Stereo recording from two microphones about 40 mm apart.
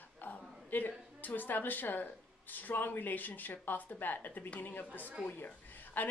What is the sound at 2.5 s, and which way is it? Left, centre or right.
Speech, left.